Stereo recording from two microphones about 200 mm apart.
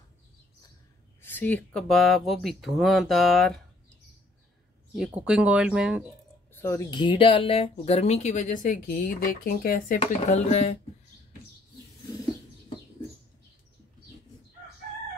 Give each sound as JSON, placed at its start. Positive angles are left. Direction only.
{"t": 1.2, "sound": "speech", "side_deg": 10}
{"t": 4.9, "sound": "speech", "side_deg": -5}
{"t": 6.5, "sound": "speech", "side_deg": 10}
{"t": 9.9, "sound": "speech", "side_deg": 35}